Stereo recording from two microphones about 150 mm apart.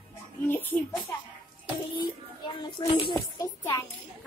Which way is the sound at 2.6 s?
30° left (ahead or behind).